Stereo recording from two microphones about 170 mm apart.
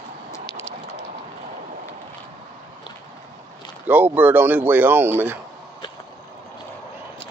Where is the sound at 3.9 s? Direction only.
10° right (ahead or behind).